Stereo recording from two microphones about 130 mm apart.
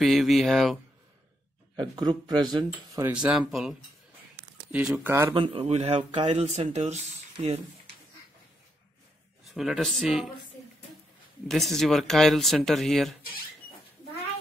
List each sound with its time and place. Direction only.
0.0 s speech: centre (ahead or behind)
1.8 s speech: 35° right (ahead or behind)
3.1 s speech: 10° right (ahead or behind)
5.3 s speech: 45° right (ahead or behind)
7.4 s speech: 45° right (ahead or behind)
9.4 s a man's voice: centre (ahead or behind)
11.4 s speech: centre (ahead or behind)